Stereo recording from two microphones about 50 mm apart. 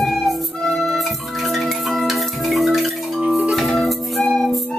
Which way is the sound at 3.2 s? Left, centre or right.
Right.